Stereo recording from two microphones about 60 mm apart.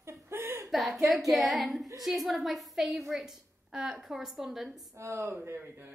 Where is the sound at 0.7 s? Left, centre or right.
Centre.